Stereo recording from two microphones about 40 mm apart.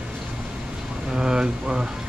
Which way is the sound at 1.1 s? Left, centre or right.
Centre.